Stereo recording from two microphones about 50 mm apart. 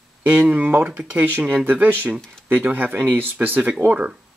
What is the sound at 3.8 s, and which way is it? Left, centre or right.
Speech, right.